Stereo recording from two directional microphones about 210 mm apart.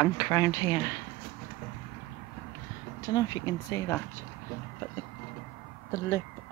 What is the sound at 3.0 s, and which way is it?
Speech, 20° left (ahead or behind).